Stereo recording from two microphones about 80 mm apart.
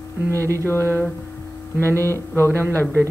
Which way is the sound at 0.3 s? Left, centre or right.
Right.